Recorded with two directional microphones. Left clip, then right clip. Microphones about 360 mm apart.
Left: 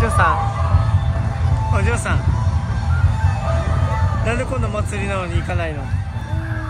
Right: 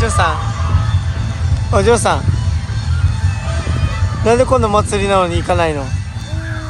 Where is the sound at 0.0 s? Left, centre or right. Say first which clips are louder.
Right 1 dB; centre.